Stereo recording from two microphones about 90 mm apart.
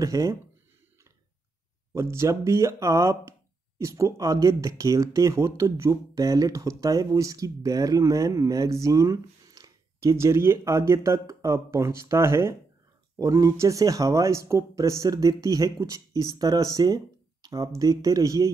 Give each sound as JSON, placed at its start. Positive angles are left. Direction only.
{"t": 0.0, "sound": "speech", "side_deg": -35}
{"t": 2.0, "sound": "speech", "side_deg": -30}